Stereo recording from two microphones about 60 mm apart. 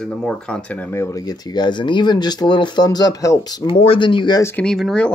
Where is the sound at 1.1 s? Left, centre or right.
Left.